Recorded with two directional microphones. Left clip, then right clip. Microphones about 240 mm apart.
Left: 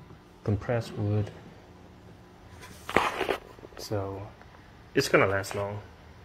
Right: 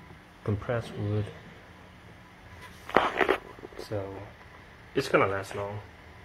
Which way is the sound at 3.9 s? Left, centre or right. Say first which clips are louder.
Left 2 dB; centre.